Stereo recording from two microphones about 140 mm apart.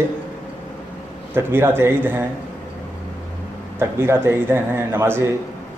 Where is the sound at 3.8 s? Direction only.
15° right (ahead or behind).